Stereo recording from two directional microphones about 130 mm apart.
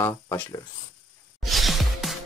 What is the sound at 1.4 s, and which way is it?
Music, centre (ahead or behind).